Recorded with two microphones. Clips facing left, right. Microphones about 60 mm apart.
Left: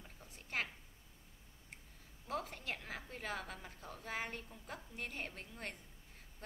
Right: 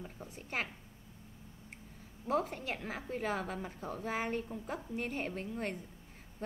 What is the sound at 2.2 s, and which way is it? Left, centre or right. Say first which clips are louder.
A woman's voice: right 8 dB; centre.